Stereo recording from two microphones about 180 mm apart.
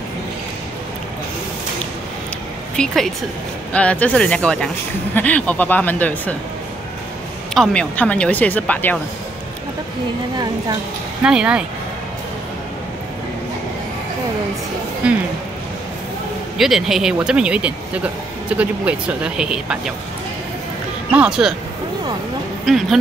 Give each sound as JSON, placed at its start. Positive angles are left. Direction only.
{"t": 2.7, "sound": "speech", "side_deg": 5}
{"t": 7.5, "sound": "speech", "side_deg": 5}
{"t": 11.2, "sound": "speech", "side_deg": -5}
{"t": 15.0, "sound": "speech", "side_deg": -5}
{"t": 16.5, "sound": "speech", "side_deg": 0}
{"t": 21.1, "sound": "speech", "side_deg": -5}
{"t": 22.7, "sound": "speech", "side_deg": 0}